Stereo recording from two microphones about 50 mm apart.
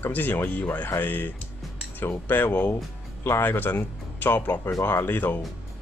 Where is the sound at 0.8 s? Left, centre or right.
Left.